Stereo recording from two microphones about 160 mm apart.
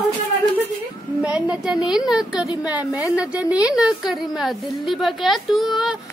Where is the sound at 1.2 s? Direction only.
5° right (ahead or behind).